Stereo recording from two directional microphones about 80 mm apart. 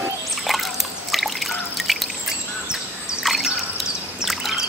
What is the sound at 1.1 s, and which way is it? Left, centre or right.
Drip, centre.